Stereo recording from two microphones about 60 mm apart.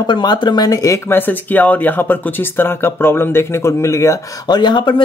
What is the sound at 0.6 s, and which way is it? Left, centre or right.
Speech, left.